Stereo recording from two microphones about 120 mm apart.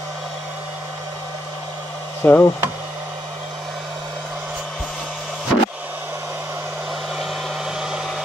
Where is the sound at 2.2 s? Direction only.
20° left (ahead or behind).